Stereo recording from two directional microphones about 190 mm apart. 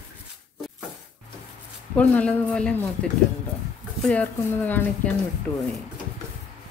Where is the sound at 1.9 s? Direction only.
5° left (ahead or behind).